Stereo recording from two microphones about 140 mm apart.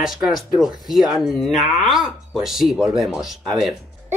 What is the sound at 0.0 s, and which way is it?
Speech, centre (ahead or behind).